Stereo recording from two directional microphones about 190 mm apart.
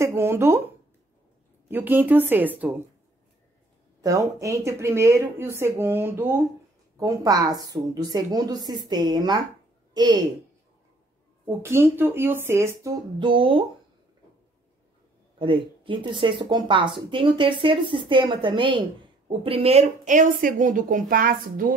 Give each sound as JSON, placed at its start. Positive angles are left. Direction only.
{"t": 0.0, "sound": "speech", "side_deg": -15}
{"t": 1.7, "sound": "speech", "side_deg": -10}
{"t": 4.0, "sound": "speech", "side_deg": -15}
{"t": 11.4, "sound": "speech", "side_deg": -15}
{"t": 13.2, "sound": "speech", "side_deg": -25}
{"t": 15.3, "sound": "speech", "side_deg": -25}